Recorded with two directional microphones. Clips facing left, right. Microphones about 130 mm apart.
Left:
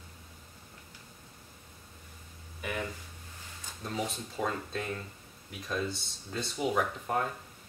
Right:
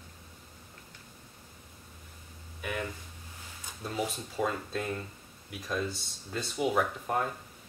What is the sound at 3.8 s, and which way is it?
Speech, 5° right (ahead or behind).